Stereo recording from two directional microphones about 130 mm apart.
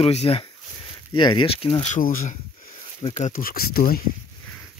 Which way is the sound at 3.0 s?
55° left (ahead or behind).